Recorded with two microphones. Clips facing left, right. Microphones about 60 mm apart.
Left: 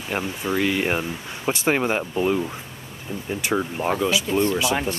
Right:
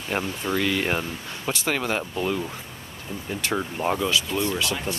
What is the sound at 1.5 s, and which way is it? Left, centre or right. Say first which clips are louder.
Speech: left 4 dB; left.